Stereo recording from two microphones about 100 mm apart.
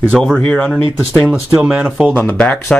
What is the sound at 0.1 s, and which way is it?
Speech, 5° left (ahead or behind).